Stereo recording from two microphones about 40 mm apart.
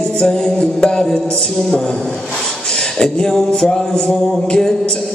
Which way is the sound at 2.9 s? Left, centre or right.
Centre.